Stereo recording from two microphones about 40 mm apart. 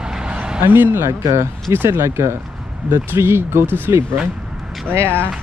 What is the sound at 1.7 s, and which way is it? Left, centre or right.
Speech, right.